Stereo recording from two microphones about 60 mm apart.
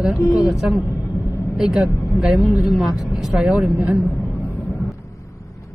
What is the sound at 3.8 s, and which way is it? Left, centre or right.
Speech, right.